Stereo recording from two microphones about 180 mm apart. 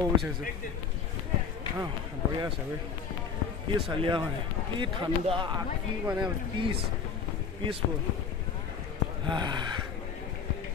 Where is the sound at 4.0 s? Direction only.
30° right (ahead or behind).